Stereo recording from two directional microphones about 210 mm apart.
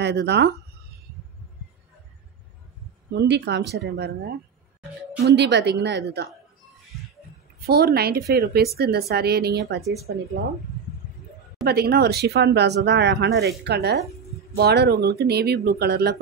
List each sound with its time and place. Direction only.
0.0 s speech: 55° right (ahead or behind)
3.2 s speech: 55° right (ahead or behind)
7.6 s speech: 50° right (ahead or behind)
11.6 s speech: 50° right (ahead or behind)